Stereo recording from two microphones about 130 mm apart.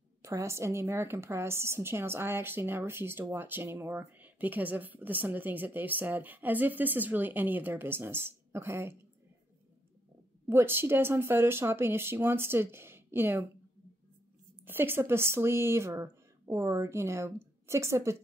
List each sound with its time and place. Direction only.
0.2 s a woman's voice: 25° right (ahead or behind)
10.5 s a woman's voice: 15° right (ahead or behind)
14.6 s speech: 15° right (ahead or behind)